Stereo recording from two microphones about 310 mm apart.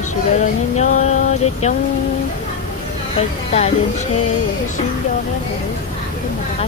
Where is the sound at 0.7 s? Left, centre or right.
Left.